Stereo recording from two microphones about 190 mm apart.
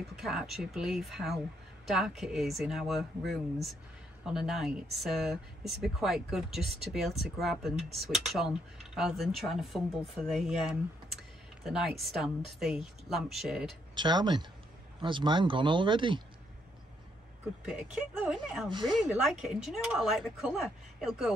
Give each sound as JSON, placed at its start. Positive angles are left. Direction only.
{"t": 0.1, "sound": "speech", "side_deg": 0}
{"t": 13.9, "sound": "speech", "side_deg": -25}
{"t": 17.6, "sound": "speech", "side_deg": -5}